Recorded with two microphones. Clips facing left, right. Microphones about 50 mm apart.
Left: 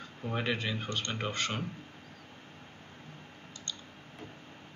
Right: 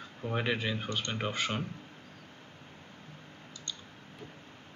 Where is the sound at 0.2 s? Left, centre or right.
Centre.